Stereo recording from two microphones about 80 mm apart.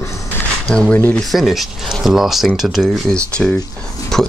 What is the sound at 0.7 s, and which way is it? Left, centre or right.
Speech, centre.